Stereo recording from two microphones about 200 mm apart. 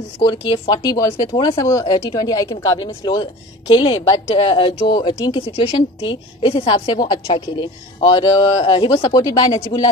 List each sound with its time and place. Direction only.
0.5 s speech: 20° left (ahead or behind)